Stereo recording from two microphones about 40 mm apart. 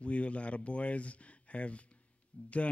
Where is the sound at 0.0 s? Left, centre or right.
Left.